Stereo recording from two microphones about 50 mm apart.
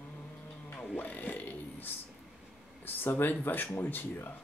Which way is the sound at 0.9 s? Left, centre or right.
Left.